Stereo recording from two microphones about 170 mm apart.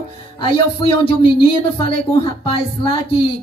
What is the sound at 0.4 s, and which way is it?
Speech, 30° left (ahead or behind).